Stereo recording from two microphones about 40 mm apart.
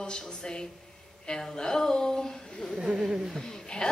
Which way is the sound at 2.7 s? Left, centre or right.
Centre.